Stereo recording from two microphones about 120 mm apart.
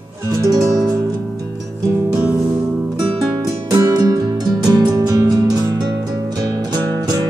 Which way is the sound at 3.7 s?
35° right (ahead or behind).